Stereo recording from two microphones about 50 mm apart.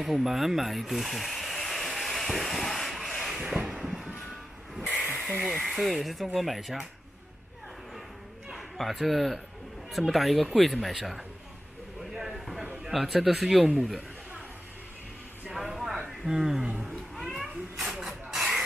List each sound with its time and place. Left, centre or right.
0.0 s a sound: centre
3.8 s music: centre
5.7 s speech: centre
8.5 s speech: centre
12.1 s a sound: centre
12.8 s speech: centre
15.5 s a sound: centre
16.3 s a man's voice: centre
16.6 s cat: right
17.1 s cat: centre